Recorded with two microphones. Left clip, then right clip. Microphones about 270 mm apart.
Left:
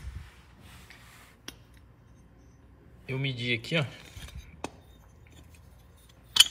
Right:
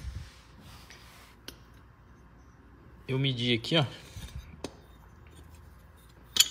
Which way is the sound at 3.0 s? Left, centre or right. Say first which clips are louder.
Right 3 dB; centre.